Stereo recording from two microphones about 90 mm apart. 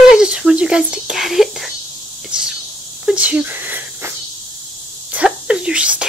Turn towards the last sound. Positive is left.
turn(degrees=-10)  # may be behind; listen again after turning